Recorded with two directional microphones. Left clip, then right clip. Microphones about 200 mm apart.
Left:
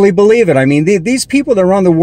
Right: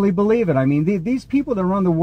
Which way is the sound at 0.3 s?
15° left (ahead or behind).